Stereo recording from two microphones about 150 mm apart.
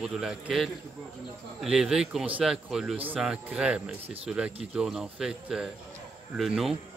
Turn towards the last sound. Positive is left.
turn(degrees=0)  # may be behind; listen again after turning